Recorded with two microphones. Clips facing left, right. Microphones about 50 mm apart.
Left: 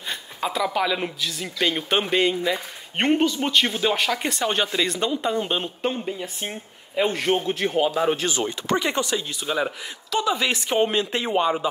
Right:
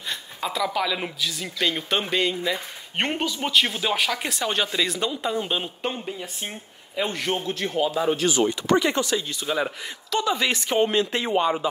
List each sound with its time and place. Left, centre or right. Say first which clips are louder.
0.1 s a sound: left 2 dB; centre
1.0 s a man's voice: left 1 dB; centre; by 9.1 s left
9.1 s a man's voice: even; centre
10.8 s speech: right 1 dB; centre